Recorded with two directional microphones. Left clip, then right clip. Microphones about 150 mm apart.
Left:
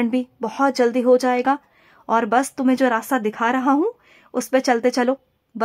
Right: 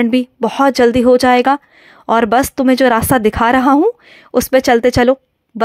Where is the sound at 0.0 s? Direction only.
30° right (ahead or behind).